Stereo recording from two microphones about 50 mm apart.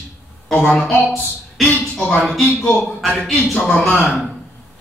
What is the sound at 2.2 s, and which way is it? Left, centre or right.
A man's voice, centre.